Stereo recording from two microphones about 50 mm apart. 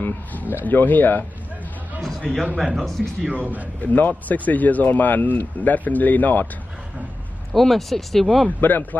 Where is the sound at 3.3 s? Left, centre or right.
Right.